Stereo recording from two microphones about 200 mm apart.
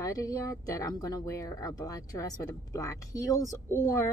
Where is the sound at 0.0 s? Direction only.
15° left (ahead or behind).